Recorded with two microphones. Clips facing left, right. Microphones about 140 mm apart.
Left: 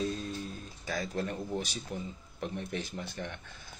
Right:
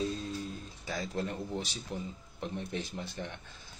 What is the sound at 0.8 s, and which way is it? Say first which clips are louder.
A man's voice: left 1 dB; 20° right (ahead or behind).